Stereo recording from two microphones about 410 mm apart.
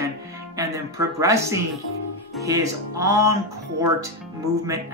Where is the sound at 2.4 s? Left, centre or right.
Centre.